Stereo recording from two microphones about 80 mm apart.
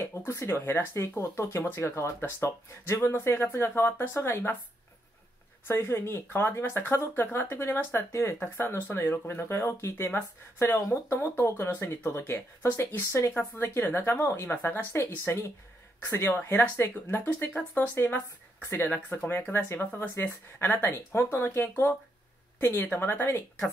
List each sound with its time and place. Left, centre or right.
0.0 s speech: left
5.7 s speech: left